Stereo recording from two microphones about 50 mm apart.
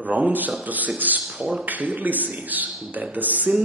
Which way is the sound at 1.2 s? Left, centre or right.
Centre.